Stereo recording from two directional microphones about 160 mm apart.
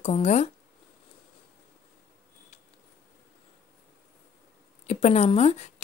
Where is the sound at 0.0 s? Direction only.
40° left (ahead or behind).